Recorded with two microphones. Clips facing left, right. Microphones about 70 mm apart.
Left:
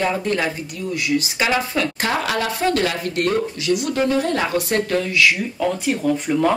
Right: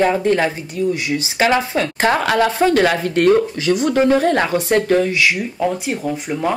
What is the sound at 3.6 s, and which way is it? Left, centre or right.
Speech, right.